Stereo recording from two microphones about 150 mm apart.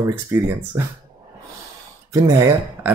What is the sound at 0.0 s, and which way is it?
Speech, 20° right (ahead or behind).